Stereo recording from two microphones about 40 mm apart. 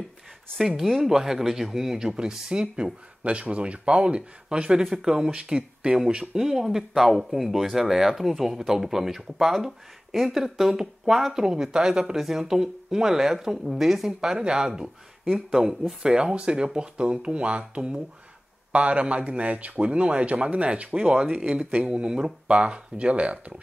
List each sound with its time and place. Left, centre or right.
1.0 s speech: centre
3.3 s speech: right
16.0 s speech: centre